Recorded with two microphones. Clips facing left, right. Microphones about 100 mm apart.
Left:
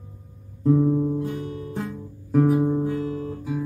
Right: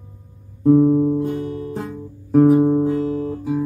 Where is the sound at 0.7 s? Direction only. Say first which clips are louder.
Right 7 dB; 30° right (ahead or behind).